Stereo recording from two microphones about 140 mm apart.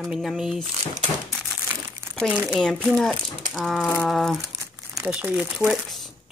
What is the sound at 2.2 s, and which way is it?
Speech, 10° right (ahead or behind).